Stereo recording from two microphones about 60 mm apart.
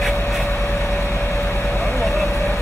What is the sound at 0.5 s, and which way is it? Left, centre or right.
Vehicle, left.